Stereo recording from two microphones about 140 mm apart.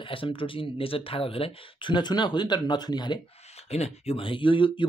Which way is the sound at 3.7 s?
50° left (ahead or behind).